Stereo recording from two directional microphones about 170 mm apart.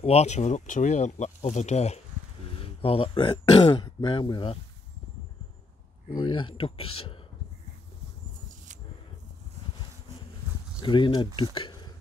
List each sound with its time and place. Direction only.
0.0 s speech: 40° left (ahead or behind)
6.1 s speech: 30° left (ahead or behind)
10.8 s speech: 25° left (ahead or behind)
11.5 s a sound: 25° left (ahead or behind)